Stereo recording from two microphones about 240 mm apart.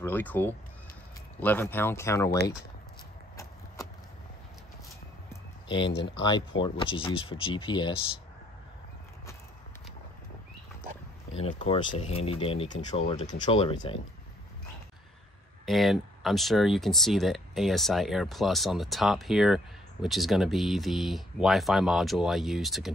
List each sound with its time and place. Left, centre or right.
0.0 s speech: centre
5.3 s a sound: centre
5.9 s speech: left
6.6 s speech: left
11.3 s speech: left
15.6 s speech: centre